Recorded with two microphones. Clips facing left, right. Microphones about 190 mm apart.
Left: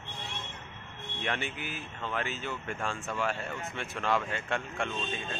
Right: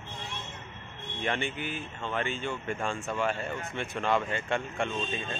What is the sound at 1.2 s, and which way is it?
Speech, 5° left (ahead or behind).